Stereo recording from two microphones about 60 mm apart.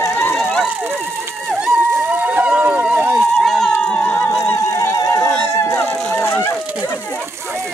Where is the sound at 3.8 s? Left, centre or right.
Centre.